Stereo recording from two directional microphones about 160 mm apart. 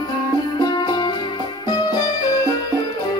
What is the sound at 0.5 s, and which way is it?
Music, 25° left (ahead or behind).